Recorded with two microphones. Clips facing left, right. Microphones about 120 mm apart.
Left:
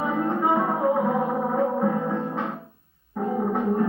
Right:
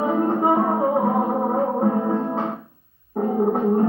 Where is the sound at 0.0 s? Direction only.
35° right (ahead or behind).